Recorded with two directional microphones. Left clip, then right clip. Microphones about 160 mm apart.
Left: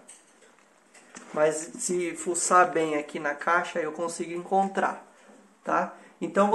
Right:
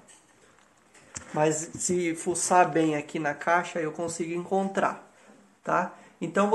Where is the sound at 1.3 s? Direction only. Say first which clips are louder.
Left 1 dB; 20° right (ahead or behind).